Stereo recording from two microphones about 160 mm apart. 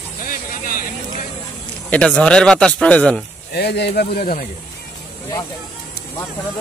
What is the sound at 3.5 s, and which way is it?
Speech, 90° left.